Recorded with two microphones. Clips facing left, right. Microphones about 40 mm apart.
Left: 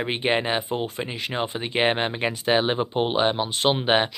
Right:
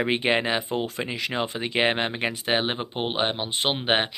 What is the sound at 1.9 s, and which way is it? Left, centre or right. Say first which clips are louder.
Speech: left 1 dB; right.